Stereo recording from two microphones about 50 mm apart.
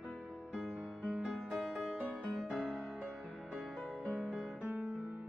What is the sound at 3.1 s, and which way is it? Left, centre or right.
Music, right.